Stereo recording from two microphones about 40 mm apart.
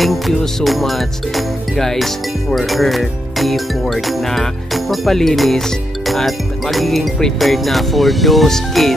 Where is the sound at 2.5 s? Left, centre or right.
Centre.